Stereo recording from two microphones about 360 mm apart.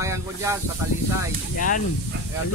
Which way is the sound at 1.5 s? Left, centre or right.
Left.